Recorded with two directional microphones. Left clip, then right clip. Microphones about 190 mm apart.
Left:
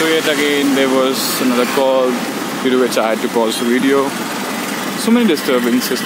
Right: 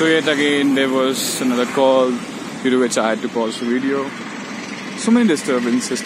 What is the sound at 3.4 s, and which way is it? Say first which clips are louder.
Speech: left 5 dB; 25° left (ahead or behind).